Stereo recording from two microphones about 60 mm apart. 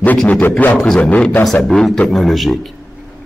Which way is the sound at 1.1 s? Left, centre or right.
Left.